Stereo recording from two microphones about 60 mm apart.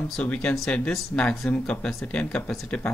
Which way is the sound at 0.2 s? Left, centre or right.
Centre.